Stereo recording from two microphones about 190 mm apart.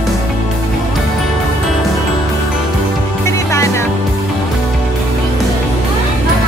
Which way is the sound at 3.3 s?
15° left (ahead or behind).